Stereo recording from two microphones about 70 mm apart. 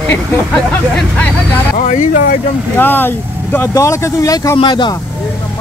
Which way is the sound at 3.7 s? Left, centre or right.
Left.